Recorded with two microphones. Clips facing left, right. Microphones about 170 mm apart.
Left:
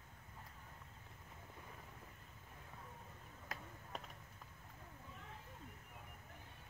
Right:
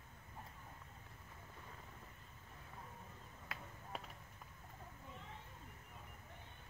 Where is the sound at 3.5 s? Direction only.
40° left (ahead or behind).